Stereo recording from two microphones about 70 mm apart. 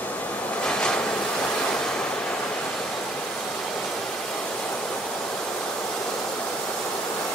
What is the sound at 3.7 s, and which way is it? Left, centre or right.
Waterfall, centre.